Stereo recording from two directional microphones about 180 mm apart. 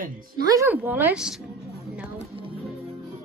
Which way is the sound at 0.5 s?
15° right (ahead or behind).